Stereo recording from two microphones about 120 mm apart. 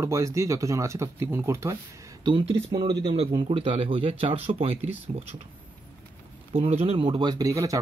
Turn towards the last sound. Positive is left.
turn(degrees=-30)  # may be behind; listen again after turning